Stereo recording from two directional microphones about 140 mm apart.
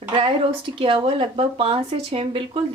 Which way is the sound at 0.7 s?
40° right (ahead or behind).